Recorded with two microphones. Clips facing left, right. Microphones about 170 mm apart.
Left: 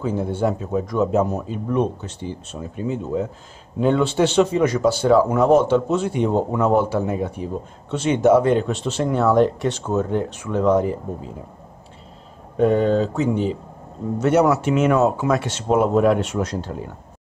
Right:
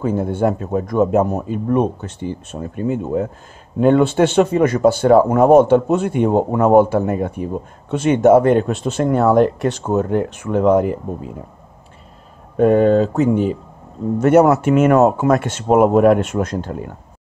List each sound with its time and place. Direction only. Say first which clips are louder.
0.0 s speech: right 4 dB; 55° right (ahead or behind)
12.5 s speech: right 5 dB; 50° right (ahead or behind)